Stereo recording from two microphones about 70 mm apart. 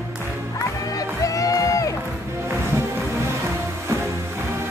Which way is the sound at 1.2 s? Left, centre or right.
Left.